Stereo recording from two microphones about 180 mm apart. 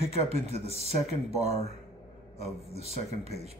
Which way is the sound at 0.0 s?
35° right (ahead or behind).